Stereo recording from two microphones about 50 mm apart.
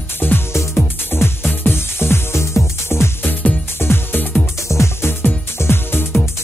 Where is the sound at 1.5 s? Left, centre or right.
Left.